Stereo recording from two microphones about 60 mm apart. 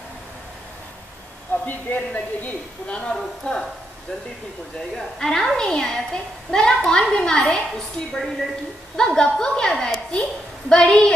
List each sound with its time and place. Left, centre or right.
1.7 s a woman's voice: left
4.9 s a woman's voice: centre